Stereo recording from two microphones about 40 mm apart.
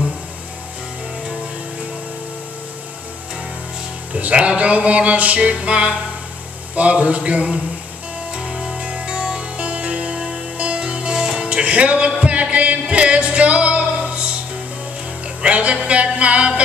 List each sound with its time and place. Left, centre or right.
4.1 s speech: right
5.4 s music: right
6.7 s speech: right
8.3 s music: right
9.6 s music: right
15.4 s speech: right